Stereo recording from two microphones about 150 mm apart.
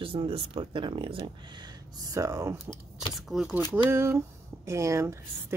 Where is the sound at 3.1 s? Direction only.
Centre (ahead or behind).